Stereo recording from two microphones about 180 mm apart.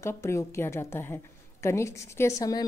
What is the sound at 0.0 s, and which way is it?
A woman's voice, 15° left (ahead or behind).